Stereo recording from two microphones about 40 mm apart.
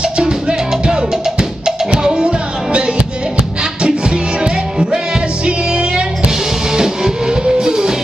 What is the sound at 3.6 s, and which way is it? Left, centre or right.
Music, right.